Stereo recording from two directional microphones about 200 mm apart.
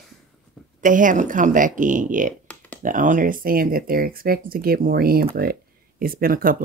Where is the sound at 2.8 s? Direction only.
40° right (ahead or behind).